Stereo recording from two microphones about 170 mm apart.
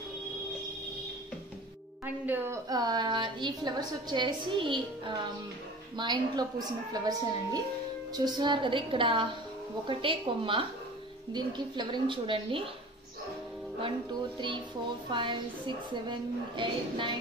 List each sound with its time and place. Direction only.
2.2 s a woman's voice: 15° right (ahead or behind); by 12.6 s 30° right (ahead or behind)
15.0 s a woman's voice: 30° right (ahead or behind)